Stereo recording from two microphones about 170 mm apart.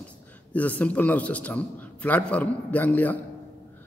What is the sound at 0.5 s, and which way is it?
A man's voice, 10° left (ahead or behind).